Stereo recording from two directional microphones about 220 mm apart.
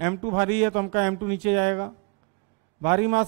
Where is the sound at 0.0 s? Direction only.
20° right (ahead or behind).